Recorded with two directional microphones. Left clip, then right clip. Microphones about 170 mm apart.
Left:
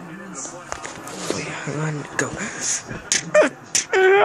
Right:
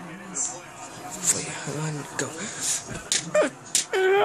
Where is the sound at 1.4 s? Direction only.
5° left (ahead or behind).